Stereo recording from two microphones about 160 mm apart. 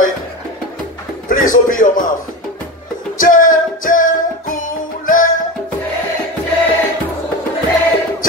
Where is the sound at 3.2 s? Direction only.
55° left (ahead or behind).